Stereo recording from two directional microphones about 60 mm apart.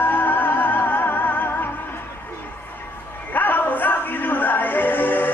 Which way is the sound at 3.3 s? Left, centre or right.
Left.